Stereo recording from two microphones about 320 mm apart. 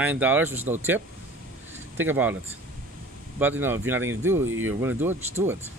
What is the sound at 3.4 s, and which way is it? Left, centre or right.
Speech, centre.